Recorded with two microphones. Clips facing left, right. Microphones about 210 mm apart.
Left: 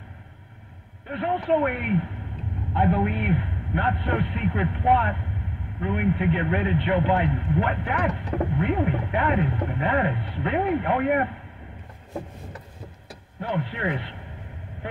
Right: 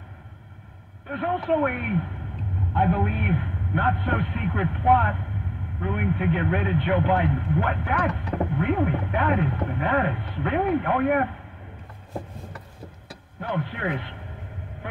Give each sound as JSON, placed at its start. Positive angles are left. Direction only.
{"t": 1.1, "sound": "speech", "side_deg": -45}
{"t": 13.4, "sound": "speech", "side_deg": -45}